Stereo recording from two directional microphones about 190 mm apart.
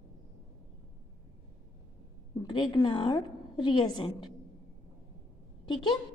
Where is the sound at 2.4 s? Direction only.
20° left (ahead or behind).